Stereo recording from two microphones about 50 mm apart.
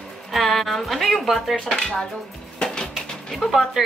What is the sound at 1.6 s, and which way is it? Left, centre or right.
Speech, centre.